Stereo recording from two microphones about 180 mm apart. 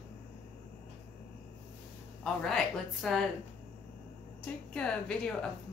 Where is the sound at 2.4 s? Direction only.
Centre (ahead or behind).